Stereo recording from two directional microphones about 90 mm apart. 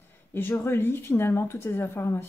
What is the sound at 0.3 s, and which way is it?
A woman's voice, 25° left (ahead or behind).